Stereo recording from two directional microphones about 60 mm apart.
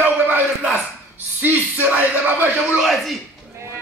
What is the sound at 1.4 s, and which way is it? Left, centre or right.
Speech, right.